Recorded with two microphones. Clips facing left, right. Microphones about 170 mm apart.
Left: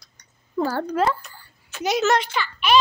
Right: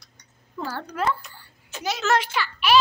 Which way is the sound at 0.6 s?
45° left (ahead or behind).